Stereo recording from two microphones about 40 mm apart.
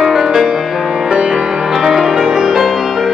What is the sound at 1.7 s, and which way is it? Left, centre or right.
Music, centre.